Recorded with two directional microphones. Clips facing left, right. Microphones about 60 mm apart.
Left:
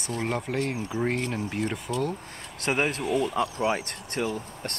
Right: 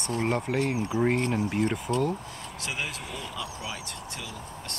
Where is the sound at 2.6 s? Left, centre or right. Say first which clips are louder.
Left 9 dB; left.